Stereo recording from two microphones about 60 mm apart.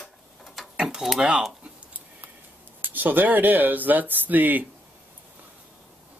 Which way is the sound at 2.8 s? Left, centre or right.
Right.